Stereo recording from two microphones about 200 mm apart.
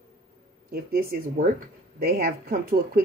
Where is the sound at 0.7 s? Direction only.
50° right (ahead or behind).